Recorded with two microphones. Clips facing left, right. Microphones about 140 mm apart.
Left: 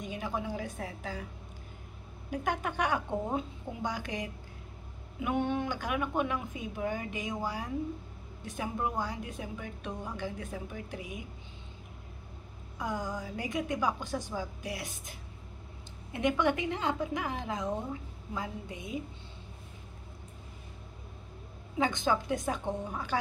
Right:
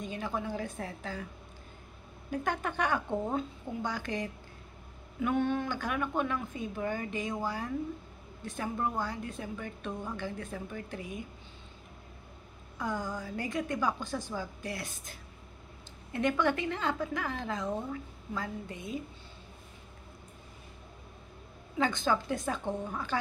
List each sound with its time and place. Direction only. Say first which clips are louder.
0.0 s a woman's voice: even; 15° left (ahead or behind)
2.4 s a woman's voice: left 1 dB; 15° left (ahead or behind)
12.7 s a woman's voice: even; 15° left (ahead or behind)
21.7 s a woman's voice: even; 15° left (ahead or behind)